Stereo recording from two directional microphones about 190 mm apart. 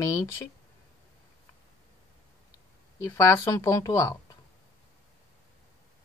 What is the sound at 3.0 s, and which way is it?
Speech, 15° left (ahead or behind).